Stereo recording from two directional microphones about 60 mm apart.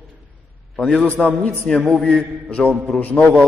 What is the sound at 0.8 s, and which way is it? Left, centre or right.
Speech, centre.